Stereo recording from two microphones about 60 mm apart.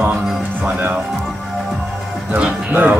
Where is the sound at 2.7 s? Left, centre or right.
Right.